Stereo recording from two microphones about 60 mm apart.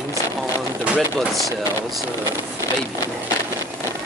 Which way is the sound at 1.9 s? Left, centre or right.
Right.